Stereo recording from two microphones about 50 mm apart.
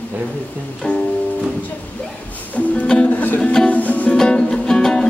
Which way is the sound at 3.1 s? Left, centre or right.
Left.